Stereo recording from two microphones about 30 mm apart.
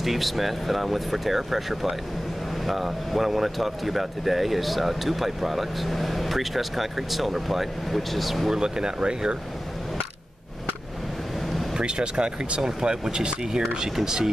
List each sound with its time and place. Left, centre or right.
0.0 s speech: centre
8.5 s speech: right
11.8 s speech: right; by 14.3 s centre